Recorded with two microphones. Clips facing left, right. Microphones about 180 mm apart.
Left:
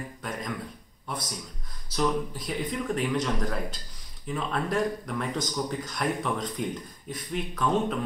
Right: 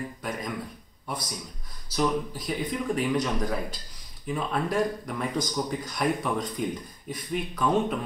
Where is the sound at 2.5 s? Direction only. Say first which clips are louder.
Right 2 dB; 5° right (ahead or behind).